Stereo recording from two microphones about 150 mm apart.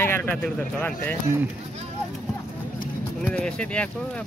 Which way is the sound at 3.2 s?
10° left (ahead or behind).